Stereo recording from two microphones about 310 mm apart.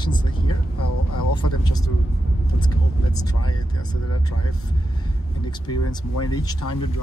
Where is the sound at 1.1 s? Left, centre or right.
Left.